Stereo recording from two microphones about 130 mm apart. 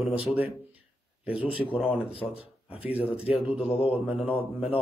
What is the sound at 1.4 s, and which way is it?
A man's voice, 45° left (ahead or behind).